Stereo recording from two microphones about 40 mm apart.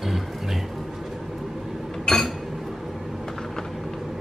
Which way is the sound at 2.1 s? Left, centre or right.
Centre.